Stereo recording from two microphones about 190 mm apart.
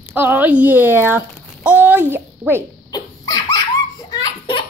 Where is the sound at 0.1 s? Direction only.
10° right (ahead or behind).